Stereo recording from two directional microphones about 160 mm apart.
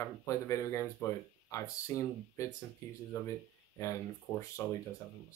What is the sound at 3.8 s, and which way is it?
Speech, 20° left (ahead or behind).